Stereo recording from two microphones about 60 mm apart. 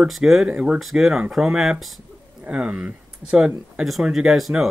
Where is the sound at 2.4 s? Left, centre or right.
Right.